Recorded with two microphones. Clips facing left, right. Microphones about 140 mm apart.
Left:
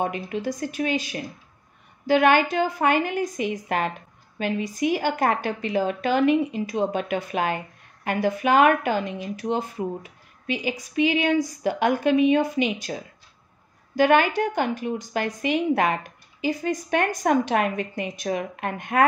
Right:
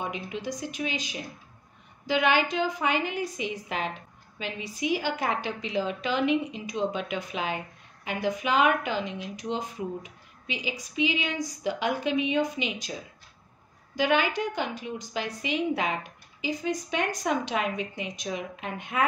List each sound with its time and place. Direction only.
0.0 s a woman's voice: 55° left (ahead or behind)
2.0 s a woman's voice: 50° left (ahead or behind)
13.9 s a woman's voice: 55° left (ahead or behind)